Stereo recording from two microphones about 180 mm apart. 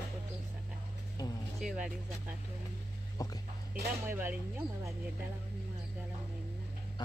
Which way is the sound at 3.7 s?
10° right (ahead or behind).